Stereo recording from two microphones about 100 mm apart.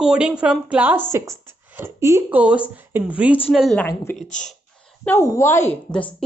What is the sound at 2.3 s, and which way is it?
Speech, 15° right (ahead or behind).